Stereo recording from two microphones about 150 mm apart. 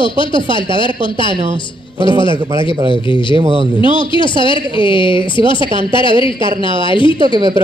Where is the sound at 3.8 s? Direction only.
35° left (ahead or behind).